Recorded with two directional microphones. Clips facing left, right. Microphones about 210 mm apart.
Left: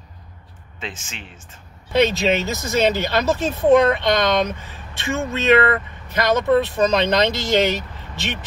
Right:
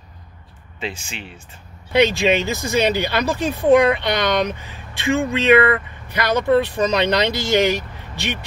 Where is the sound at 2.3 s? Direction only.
15° right (ahead or behind).